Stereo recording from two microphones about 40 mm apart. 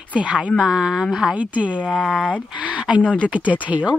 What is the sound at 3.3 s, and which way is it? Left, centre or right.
Speech, right.